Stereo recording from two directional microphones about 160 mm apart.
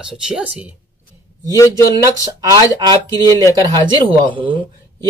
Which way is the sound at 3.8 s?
30° right (ahead or behind).